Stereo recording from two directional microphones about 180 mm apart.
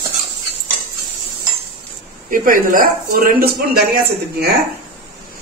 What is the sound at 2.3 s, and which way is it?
Speech, 50° right (ahead or behind).